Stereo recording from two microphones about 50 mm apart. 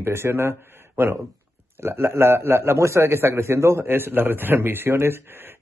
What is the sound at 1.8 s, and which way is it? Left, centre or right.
A man's voice, right.